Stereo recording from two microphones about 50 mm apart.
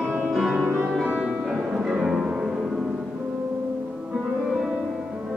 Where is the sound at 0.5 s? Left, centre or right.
Right.